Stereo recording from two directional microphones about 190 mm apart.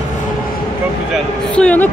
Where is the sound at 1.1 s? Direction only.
5° left (ahead or behind).